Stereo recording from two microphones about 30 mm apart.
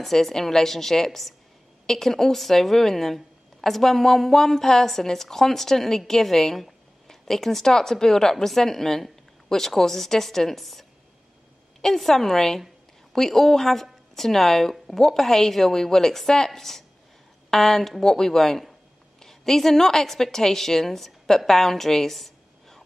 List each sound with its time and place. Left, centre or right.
0.0 s a woman's voice: centre